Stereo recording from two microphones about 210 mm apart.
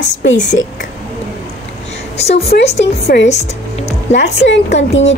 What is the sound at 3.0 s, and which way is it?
Speech, 50° left (ahead or behind).